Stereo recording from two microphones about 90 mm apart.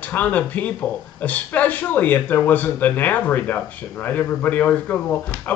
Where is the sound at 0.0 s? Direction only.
15° left (ahead or behind).